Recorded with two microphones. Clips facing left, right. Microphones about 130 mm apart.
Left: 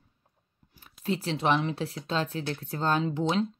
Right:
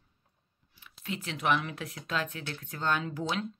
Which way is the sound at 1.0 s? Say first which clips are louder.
Left 4 dB; 35° left (ahead or behind).